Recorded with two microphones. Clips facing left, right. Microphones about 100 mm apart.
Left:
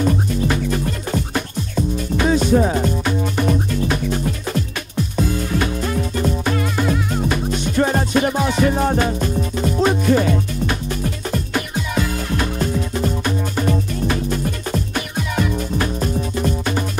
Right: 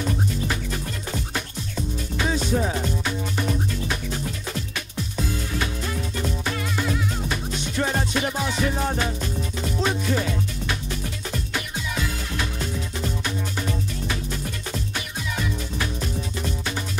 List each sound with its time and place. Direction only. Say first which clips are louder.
0.0 s music: left 7 dB; 55° left (ahead or behind)